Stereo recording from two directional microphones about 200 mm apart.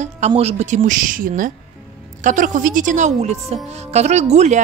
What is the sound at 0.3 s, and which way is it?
Speech, 30° right (ahead or behind).